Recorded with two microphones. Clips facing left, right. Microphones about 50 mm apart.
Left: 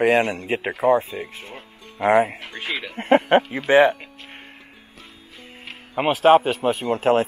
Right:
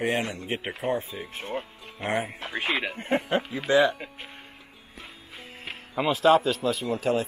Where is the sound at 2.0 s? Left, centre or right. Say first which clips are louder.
Left 11 dB; left.